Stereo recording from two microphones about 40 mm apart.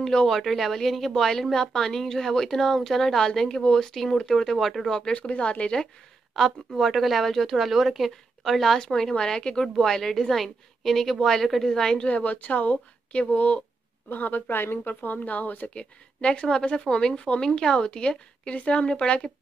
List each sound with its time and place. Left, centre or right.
0.0 s speech: centre
0.4 s speech: centre
4.9 s speech: left
6.3 s speech: centre
8.7 s speech: centre
12.0 s speech: left
14.0 s speech: left
15.7 s speech: left